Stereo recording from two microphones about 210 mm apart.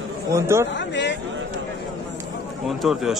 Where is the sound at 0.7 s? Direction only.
55° left (ahead or behind).